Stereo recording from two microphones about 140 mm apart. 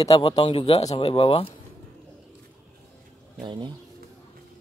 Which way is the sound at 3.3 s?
35° right (ahead or behind).